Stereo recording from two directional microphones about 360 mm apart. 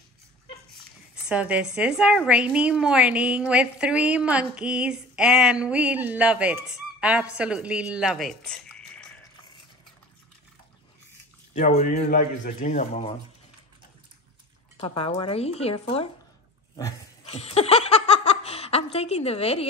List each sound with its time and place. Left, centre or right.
1.3 s a woman's voice: centre
11.5 s speech: centre
14.8 s speech: centre
16.7 s laughter: centre